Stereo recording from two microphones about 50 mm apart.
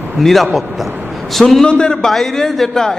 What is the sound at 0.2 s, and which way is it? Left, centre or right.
A man's voice, centre.